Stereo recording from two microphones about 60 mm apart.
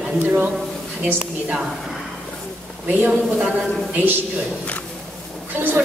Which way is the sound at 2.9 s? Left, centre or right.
Right.